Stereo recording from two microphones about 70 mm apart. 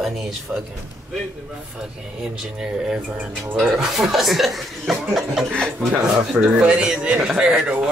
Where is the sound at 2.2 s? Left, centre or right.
Centre.